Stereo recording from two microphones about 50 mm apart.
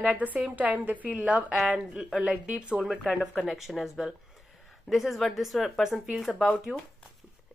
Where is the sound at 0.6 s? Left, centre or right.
Right.